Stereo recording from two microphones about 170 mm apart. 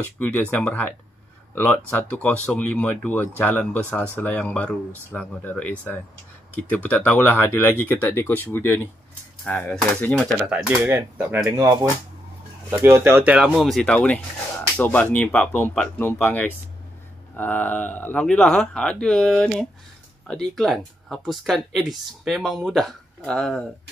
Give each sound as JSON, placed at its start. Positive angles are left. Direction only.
{"t": 0.2, "sound": "speech", "side_deg": 10}
{"t": 10.5, "sound": "speech", "side_deg": -10}